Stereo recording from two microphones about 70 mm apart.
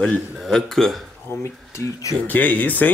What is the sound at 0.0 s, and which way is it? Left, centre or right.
Speech, centre.